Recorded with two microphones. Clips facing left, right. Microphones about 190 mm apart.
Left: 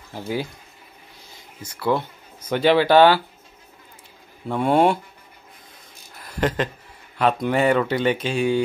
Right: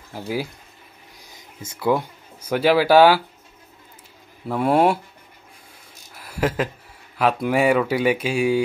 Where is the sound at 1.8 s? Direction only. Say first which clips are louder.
Right 2 dB; 10° right (ahead or behind).